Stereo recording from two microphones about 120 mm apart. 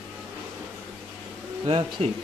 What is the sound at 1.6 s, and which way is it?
Speech, 50° right (ahead or behind).